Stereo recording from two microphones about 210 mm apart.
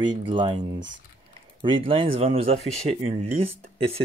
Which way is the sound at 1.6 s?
25° right (ahead or behind).